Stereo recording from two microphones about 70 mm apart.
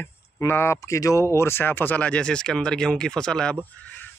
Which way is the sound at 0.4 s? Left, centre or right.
Left.